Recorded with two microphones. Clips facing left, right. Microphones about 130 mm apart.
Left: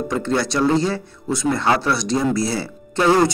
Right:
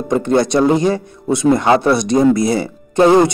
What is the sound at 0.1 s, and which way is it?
Speech, 20° right (ahead or behind).